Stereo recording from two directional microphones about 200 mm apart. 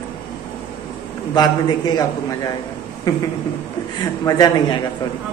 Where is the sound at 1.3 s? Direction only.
20° left (ahead or behind).